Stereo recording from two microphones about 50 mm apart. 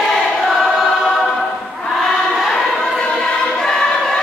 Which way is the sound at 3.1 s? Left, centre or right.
Centre.